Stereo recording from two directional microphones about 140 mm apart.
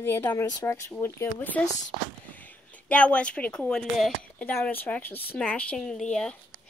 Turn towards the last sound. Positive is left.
turn(degrees=5)  # may be behind; listen again after turning